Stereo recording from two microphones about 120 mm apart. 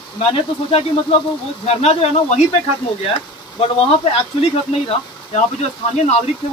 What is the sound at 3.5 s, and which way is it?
Speech, 50° left (ahead or behind).